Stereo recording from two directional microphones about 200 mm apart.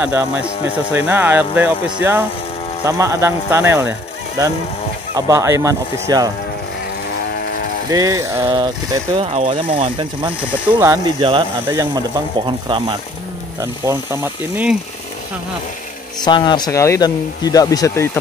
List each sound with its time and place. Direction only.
0.0 s speech: 5° right (ahead or behind)
5.1 s speech: 15° right (ahead or behind)
7.9 s speech: 15° right (ahead or behind)
10.8 s speech: 15° right (ahead or behind)
16.3 s speech: 20° left (ahead or behind)